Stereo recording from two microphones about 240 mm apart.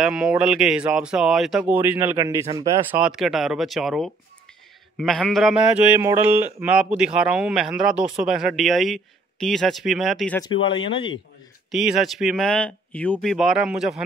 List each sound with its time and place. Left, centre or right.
0.0 s speech: centre
10.4 s speech: left
11.7 s speech: centre